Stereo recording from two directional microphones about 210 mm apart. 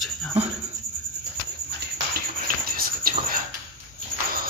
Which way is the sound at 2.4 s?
45° right (ahead or behind).